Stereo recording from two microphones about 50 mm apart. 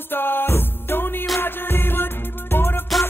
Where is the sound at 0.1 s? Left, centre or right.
Left.